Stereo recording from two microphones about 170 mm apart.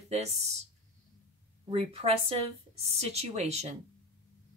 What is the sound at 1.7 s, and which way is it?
Speech, 35° right (ahead or behind).